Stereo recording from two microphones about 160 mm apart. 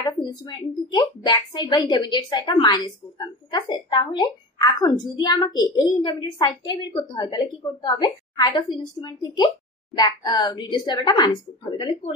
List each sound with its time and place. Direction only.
0.2 s speech: 30° left (ahead or behind)